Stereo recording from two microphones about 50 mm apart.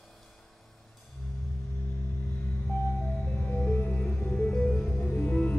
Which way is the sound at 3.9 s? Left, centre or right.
Left.